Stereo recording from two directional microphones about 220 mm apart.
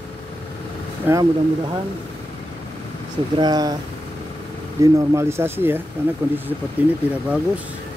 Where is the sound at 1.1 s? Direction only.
10° right (ahead or behind).